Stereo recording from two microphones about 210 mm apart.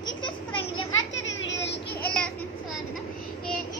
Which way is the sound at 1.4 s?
60° left (ahead or behind).